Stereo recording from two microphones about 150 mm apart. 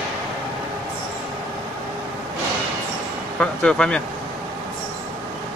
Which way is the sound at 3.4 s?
5° left (ahead or behind).